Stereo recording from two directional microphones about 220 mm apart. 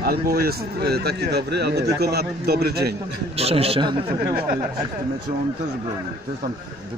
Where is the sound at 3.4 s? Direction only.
25° right (ahead or behind).